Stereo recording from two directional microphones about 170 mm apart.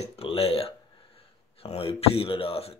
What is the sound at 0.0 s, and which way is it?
Speech, 35° left (ahead or behind).